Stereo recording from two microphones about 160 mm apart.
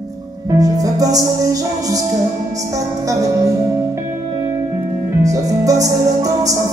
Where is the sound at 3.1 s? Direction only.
20° right (ahead or behind).